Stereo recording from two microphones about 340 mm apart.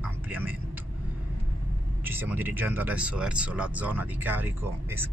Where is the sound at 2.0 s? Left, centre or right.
Centre.